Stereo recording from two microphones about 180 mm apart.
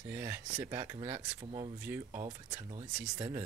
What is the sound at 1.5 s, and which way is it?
Speech, 30° right (ahead or behind).